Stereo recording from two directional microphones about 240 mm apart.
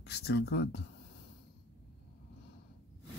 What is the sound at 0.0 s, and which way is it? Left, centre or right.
Speech, left.